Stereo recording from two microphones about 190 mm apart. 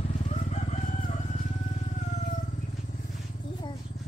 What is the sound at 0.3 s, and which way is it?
Crowing, 35° left (ahead or behind).